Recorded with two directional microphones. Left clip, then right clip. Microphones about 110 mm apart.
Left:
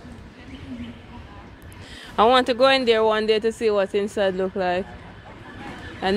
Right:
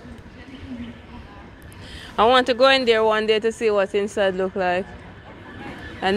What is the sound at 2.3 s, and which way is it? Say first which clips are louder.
Speech: right 3 dB; 35° left (ahead or behind).